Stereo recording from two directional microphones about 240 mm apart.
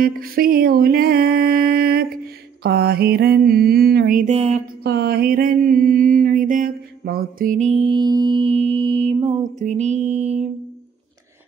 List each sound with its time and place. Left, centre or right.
0.0 s mantra: right
4.8 s mantra: right
7.7 s music: right